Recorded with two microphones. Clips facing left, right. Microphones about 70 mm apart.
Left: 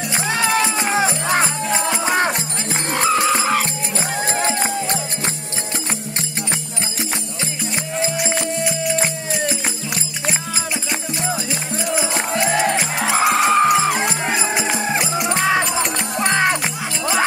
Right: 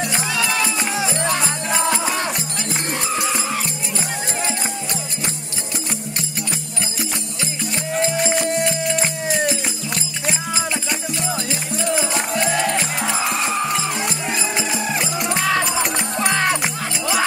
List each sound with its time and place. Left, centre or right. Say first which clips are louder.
0.3 s music: left 6 dB; left
1.7 s music: even; centre
2.1 s music: left 5 dB; left
2.9 s music: left 9 dB; left
3.3 s music: left 6 dB; left
11.8 s music: even; centre
13.1 s music: left 9 dB; left
13.9 s music: left 3 dB; left
15.0 s music: left 2 dB; centre